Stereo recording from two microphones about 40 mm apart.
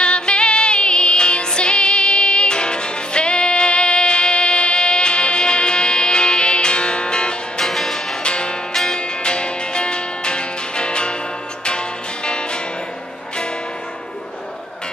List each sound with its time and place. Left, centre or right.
0.0 s music: left
7.6 s music: centre
8.2 s music: left
12.3 s music: left